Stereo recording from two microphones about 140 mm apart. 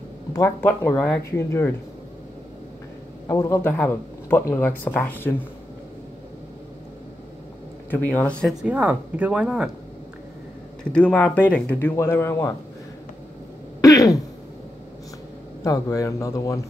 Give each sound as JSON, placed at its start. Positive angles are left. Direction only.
{"t": 0.3, "sound": "speech", "side_deg": 15}
{"t": 3.3, "sound": "speech", "side_deg": 20}
{"t": 7.9, "sound": "speech", "side_deg": 10}
{"t": 8.6, "sound": "speech", "side_deg": -10}
{"t": 10.9, "sound": "a man's voice", "side_deg": 10}
{"t": 13.7, "sound": "throat clearing", "side_deg": 25}
{"t": 15.6, "sound": "a man's voice", "side_deg": 25}